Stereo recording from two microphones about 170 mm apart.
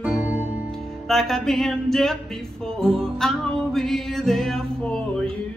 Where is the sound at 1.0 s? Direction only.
Centre (ahead or behind).